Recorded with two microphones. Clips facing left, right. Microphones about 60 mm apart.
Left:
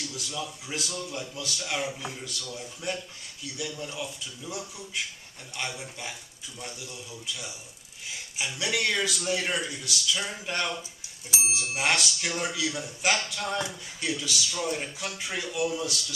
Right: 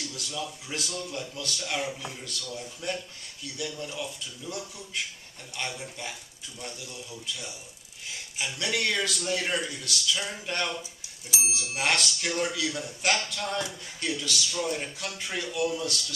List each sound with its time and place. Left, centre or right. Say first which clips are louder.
0.1 s a man's voice: even; centre
8.4 s a man's voice: left 1 dB; centre
11.2 s speech: left 2 dB; left
11.7 s a man's voice: even; centre